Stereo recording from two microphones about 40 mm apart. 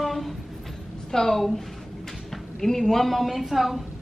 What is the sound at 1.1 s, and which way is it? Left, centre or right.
A child's voice, centre.